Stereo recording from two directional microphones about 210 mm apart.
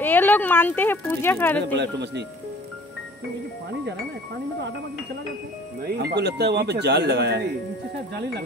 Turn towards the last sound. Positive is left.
turn(degrees=-55)  # may be behind; listen again after turning